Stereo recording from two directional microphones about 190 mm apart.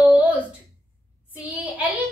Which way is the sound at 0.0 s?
10° right (ahead or behind).